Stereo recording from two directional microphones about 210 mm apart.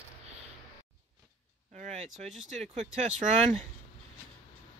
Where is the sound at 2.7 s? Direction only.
35° right (ahead or behind).